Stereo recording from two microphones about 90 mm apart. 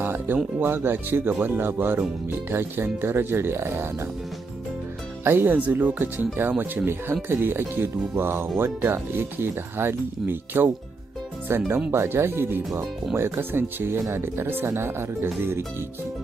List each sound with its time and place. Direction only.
0.0 s music: 20° right (ahead or behind)
0.6 s speech: 25° right (ahead or behind)
5.2 s speech: 25° right (ahead or behind)